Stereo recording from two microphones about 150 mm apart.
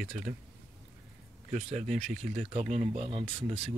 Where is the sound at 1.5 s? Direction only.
45° right (ahead or behind).